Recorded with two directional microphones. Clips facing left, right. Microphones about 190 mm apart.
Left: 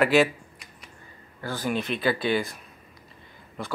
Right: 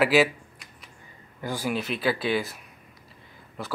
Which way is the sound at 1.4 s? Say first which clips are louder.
Even; 10° right (ahead or behind).